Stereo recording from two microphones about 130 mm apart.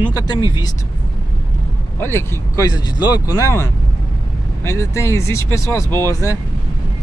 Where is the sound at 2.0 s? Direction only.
20° left (ahead or behind).